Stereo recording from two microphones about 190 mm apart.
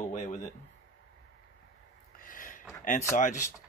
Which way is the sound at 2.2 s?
45° left (ahead or behind).